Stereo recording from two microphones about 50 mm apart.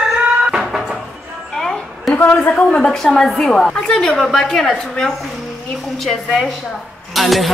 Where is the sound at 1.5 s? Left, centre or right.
Centre.